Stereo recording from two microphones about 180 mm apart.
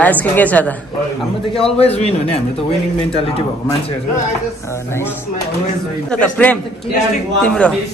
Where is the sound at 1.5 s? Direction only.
35° left (ahead or behind).